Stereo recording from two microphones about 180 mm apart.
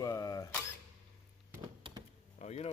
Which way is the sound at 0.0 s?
20° left (ahead or behind).